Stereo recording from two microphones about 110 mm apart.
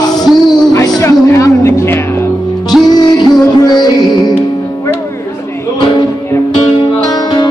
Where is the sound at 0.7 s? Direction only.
25° left (ahead or behind).